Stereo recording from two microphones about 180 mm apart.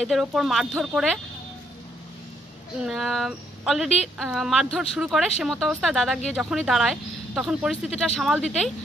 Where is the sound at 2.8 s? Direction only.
Centre (ahead or behind).